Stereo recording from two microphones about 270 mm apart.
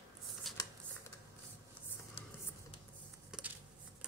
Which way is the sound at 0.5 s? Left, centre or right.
Centre.